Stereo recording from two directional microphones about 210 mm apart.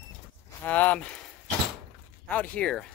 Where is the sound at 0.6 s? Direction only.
10° left (ahead or behind).